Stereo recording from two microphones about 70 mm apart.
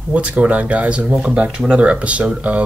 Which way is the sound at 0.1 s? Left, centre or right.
Centre.